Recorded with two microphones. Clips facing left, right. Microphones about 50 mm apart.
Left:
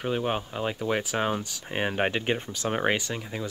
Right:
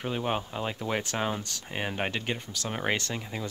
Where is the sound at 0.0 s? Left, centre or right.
Centre.